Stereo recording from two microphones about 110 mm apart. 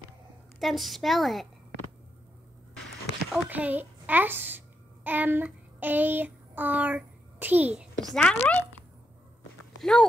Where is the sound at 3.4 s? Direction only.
15° right (ahead or behind).